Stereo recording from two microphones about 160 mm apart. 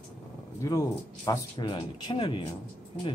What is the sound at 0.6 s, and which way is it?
Speech, 20° left (ahead or behind).